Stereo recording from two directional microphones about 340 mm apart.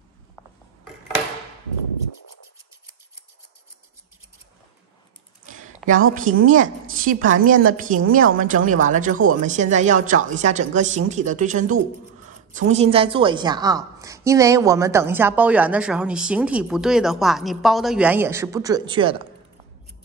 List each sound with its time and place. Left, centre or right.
6.3 s a woman's voice: right